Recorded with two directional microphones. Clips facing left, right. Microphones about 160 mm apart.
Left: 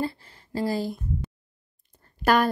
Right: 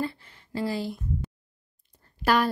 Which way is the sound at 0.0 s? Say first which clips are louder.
Left 2 dB; 35° left (ahead or behind).